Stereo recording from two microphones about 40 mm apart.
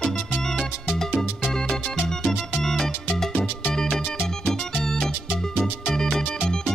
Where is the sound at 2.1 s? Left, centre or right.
Centre.